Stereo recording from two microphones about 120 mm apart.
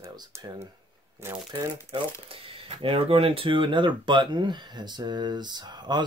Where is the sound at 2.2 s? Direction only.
50° right (ahead or behind).